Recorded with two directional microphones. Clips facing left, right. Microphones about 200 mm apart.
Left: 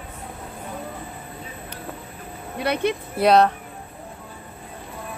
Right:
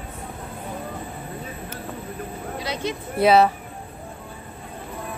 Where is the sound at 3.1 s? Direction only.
5° right (ahead or behind).